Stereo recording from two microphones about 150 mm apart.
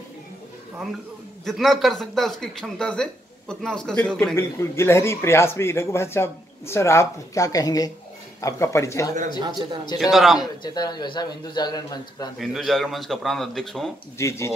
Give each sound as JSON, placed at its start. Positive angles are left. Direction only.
{"t": 1.4, "sound": "speech", "side_deg": 0}
{"t": 4.4, "sound": "a man's voice", "side_deg": 15}
{"t": 10.1, "sound": "speech", "side_deg": 0}
{"t": 10.4, "sound": "a man's voice", "side_deg": 25}
{"t": 12.4, "sound": "speech", "side_deg": 0}
{"t": 14.1, "sound": "a man's voice", "side_deg": 20}